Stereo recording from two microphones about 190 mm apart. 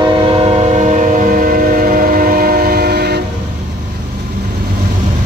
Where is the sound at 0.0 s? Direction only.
25° right (ahead or behind); by 3.2 s 55° right (ahead or behind).